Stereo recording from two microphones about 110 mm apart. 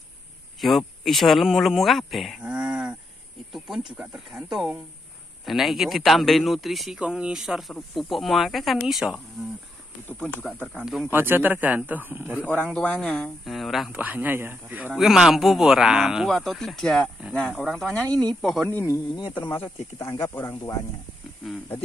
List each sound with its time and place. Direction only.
0.6 s a man's voice: centre (ahead or behind)
10.0 s speech: 10° left (ahead or behind)
11.1 s speech: 20° right (ahead or behind)
12.4 s a man's voice: 15° left (ahead or behind); by 14.0 s 5° right (ahead or behind)
14.0 s speech: 15° right (ahead or behind)
15.0 s a man's voice: 5° right (ahead or behind)
18.7 s speech: 25° left (ahead or behind)
19.1 s speech: 45° left (ahead or behind)
20.2 s speech: 25° left (ahead or behind)